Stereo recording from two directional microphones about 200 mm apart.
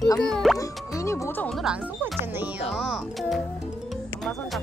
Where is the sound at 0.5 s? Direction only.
15° left (ahead or behind).